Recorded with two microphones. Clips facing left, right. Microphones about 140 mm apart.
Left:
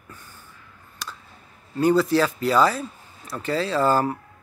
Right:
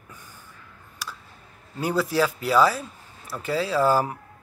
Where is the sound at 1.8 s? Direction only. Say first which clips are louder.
Left 5 dB; 5° right (ahead or behind).